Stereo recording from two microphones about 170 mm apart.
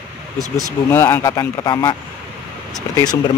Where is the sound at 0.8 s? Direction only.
15° left (ahead or behind).